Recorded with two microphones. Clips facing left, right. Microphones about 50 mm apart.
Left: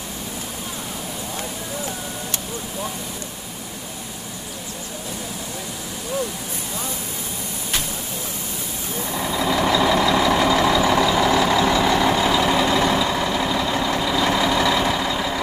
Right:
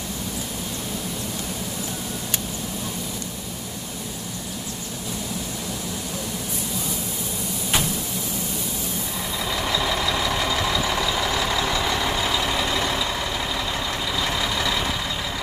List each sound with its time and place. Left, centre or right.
9.7 s vehicle: left
14.0 s vehicle: left